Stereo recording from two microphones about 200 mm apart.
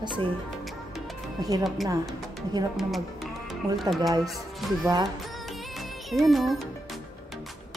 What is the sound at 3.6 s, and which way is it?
Speech, 15° right (ahead or behind).